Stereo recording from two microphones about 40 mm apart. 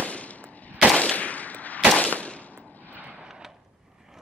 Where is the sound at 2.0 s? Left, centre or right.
Left.